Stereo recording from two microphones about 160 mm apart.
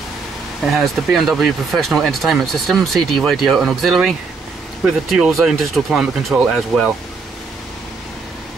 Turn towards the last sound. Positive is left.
turn(degrees=-5)  # may be behind; listen again after turning